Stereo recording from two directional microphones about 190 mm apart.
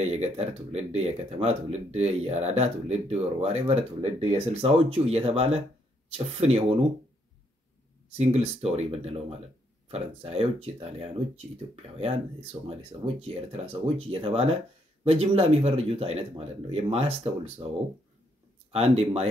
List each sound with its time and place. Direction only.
0.0 s speech: 35° right (ahead or behind)
8.1 s speech: 35° right (ahead or behind)
18.7 s speech: 30° right (ahead or behind)